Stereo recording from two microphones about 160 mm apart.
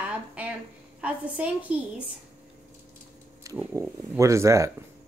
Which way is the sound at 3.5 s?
20° right (ahead or behind).